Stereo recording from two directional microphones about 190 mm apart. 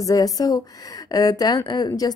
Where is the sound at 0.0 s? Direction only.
20° left (ahead or behind).